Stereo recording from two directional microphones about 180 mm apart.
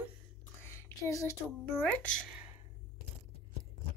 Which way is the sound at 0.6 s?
15° left (ahead or behind).